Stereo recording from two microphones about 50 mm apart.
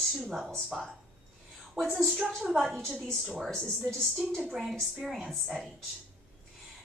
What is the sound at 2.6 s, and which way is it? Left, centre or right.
A woman's voice, centre.